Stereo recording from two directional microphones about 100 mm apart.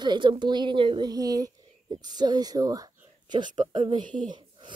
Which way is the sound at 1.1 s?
40° right (ahead or behind).